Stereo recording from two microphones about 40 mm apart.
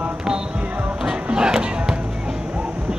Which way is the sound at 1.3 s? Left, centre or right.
Centre.